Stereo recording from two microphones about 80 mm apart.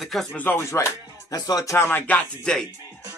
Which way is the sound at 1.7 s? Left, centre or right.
Left.